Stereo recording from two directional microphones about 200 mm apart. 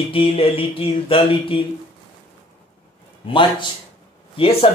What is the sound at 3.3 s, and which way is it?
Speech, 25° left (ahead or behind).